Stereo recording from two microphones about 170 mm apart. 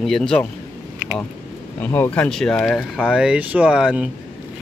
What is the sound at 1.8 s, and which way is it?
Speech, 10° left (ahead or behind).